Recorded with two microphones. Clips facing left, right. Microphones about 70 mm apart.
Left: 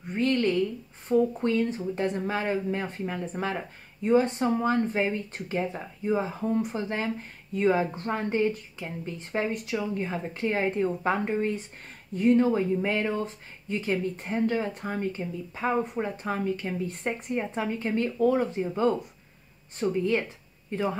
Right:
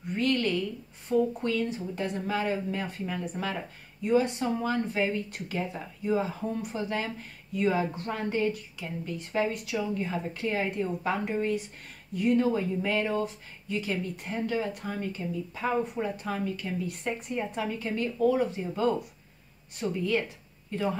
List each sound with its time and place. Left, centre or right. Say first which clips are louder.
0.1 s a woman's voice: left 2 dB; left